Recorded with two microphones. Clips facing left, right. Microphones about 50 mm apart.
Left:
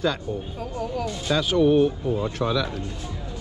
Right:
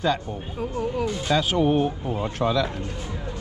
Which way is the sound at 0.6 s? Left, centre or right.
Centre.